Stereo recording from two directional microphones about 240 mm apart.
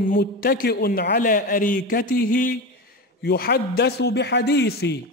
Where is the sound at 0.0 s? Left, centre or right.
Left.